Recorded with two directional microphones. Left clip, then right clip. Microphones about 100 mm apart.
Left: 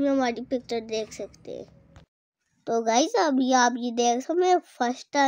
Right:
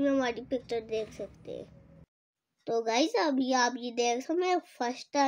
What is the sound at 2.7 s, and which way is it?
A child's voice, 65° left (ahead or behind).